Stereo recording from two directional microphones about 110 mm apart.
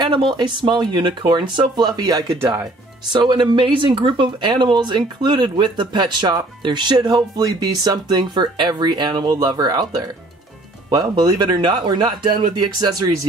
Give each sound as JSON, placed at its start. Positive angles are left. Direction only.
{"t": 0.0, "sound": "speech", "side_deg": -45}